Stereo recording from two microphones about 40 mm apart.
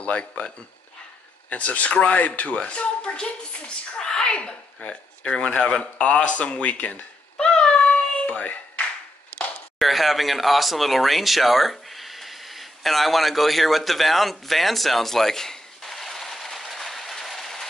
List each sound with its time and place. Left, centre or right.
0.0 s speech: left
1.5 s speech: left
2.1 s speech: left
2.4 s speech: left
7.3 s cat: left
8.3 s a sound: left
9.8 s speech: centre
14.5 s a sound: centre